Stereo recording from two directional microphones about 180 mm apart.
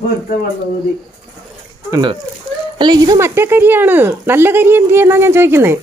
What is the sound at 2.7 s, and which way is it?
Speech, 25° right (ahead or behind).